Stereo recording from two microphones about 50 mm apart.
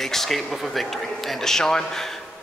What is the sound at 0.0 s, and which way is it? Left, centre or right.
Speech, centre.